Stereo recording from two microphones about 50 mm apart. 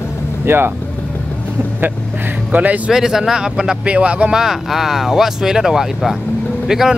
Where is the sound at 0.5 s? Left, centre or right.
Right.